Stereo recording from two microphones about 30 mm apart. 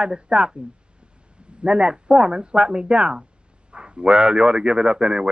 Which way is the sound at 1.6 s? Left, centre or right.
Right.